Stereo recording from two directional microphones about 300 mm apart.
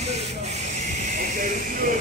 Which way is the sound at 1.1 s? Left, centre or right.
Right.